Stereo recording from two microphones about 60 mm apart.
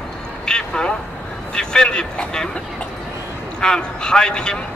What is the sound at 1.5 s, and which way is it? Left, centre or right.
Speech, centre.